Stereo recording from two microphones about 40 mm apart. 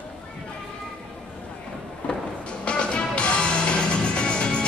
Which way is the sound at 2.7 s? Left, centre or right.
Left.